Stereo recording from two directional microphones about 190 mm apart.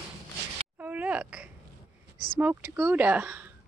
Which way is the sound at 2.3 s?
10° right (ahead or behind).